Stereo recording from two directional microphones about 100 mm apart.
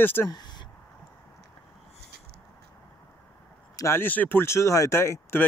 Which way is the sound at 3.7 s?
25° left (ahead or behind).